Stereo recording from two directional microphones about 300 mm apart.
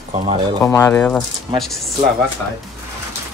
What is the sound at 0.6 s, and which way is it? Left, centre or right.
Speech, centre.